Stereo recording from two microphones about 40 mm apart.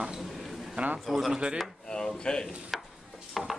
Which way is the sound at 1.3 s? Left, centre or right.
Right.